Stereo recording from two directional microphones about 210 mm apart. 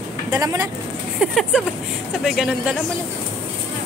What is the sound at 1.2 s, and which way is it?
Speech, centre (ahead or behind).